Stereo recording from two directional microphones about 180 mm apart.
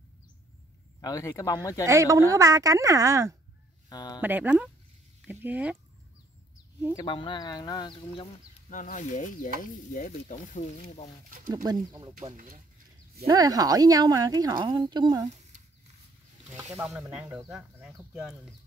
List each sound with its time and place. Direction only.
1.0 s speech: 20° left (ahead or behind)
1.9 s speech: 15° right (ahead or behind)
3.9 s a sound: 20° left (ahead or behind)
4.2 s speech: 10° right (ahead or behind)
7.0 s speech: 25° left (ahead or behind)
8.6 s speech: 45° left (ahead or behind)
11.2 s speech: 50° right (ahead or behind)
11.5 s speech: 20° right (ahead or behind)
12.2 s speech: 45° right (ahead or behind)
13.3 s speech: 20° right (ahead or behind)
16.7 s speech: 10° right (ahead or behind)